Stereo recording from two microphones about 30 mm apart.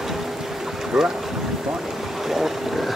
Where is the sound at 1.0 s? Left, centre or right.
Centre.